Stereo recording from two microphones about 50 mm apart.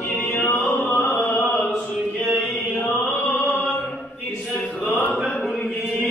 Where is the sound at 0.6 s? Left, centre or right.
Left.